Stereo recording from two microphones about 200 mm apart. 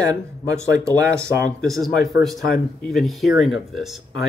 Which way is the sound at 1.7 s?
Centre (ahead or behind).